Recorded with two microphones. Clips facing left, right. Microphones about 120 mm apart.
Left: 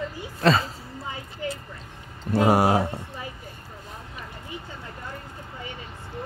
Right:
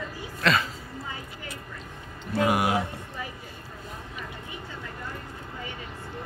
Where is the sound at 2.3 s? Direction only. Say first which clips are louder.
Left 5 dB; 35° left (ahead or behind).